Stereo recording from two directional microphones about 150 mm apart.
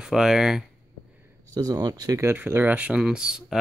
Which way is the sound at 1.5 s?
25° right (ahead or behind).